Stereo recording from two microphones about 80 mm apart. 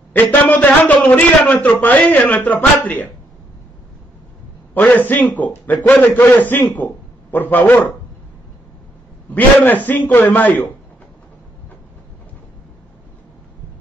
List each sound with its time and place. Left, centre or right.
0.1 s a man's voice: left
4.7 s a man's voice: left
9.3 s a man's voice: left